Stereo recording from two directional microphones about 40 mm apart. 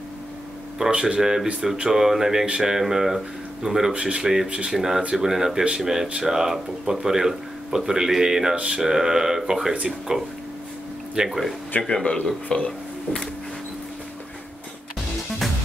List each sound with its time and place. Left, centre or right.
0.7 s speech: centre
4.7 s speech: centre
8.5 s speech: right
8.8 s speech: centre
11.2 s speech: centre
11.9 s speech: centre
12.4 s speech: left